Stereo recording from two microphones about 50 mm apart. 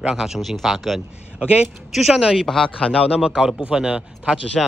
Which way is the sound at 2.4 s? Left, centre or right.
Centre.